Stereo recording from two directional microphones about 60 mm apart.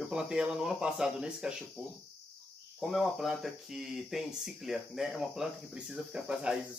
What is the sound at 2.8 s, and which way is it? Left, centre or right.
Speech, centre.